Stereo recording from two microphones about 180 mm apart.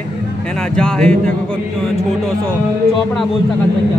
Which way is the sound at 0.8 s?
5° left (ahead or behind).